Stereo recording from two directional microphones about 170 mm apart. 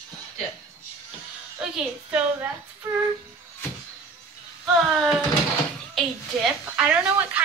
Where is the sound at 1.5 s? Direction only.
5° right (ahead or behind).